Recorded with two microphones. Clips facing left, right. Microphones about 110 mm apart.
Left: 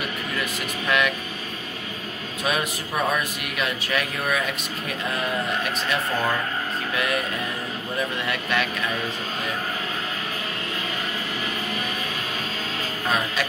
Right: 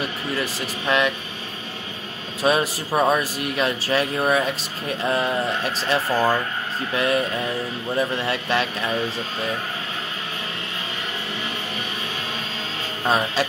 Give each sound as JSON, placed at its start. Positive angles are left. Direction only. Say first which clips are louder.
{"t": 0.3, "sound": "speech", "louder": "right 2 dB", "side_deg": -30}
{"t": 2.4, "sound": "speech", "louder": "right 6 dB", "side_deg": -30}
{"t": 8.3, "sound": "speech", "louder": "right 2 dB", "side_deg": -30}
{"t": 13.0, "sound": "speech", "louder": "right 5 dB", "side_deg": -30}